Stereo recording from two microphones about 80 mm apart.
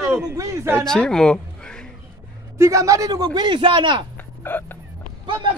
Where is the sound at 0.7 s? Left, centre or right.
Centre.